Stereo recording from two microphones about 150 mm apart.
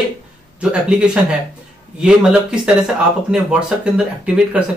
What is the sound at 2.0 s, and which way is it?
Speech, 5° right (ahead or behind).